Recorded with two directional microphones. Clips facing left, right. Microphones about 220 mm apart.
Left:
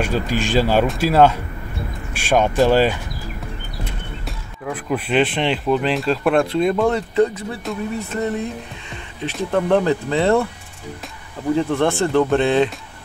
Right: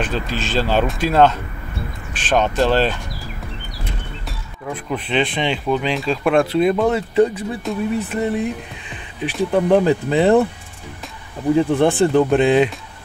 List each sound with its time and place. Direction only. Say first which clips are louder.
0.0 s speech: left 3 dB; 10° left (ahead or behind)
4.3 s speech: left 1 dB; centre (ahead or behind)
8.0 s speech: right 2 dB; 10° right (ahead or behind)
9.5 s speech: right 2 dB; 10° right (ahead or behind)
11.5 s speech: right 3 dB; 15° right (ahead or behind)